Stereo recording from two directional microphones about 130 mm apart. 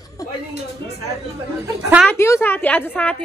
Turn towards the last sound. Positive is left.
turn(degrees=10)  # may be behind; listen again after turning